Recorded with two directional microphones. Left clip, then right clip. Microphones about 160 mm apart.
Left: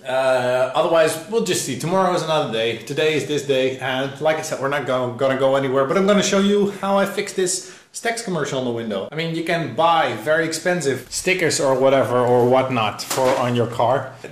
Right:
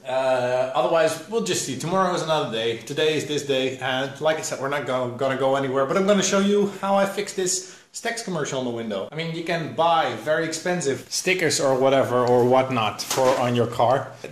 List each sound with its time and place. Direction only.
0.7 s a man's voice: 5° left (ahead or behind)
11.2 s speech: 10° right (ahead or behind)
13.2 s speech: 20° right (ahead or behind)